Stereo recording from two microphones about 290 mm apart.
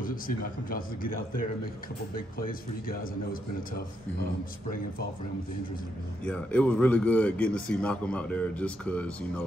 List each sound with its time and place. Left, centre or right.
0.0 s a man's voice: left
6.2 s a man's voice: centre